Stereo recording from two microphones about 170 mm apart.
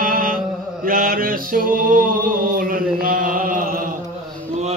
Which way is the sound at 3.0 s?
55° right (ahead or behind).